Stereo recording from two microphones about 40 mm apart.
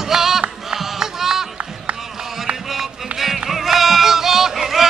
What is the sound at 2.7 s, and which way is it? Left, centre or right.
Music, centre.